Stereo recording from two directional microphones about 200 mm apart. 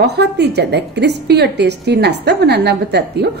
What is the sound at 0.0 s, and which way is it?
A woman's voice, 55° right (ahead or behind).